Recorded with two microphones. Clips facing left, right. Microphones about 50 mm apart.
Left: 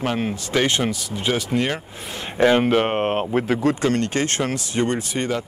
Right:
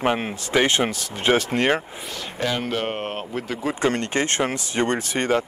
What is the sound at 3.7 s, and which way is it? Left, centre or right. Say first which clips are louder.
Speech: left 1 dB; right.